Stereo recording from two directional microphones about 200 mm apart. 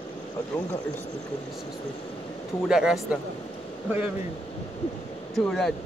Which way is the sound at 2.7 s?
5° right (ahead or behind).